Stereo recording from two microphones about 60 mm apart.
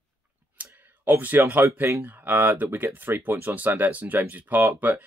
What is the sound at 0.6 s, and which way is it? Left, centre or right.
Clicking, right.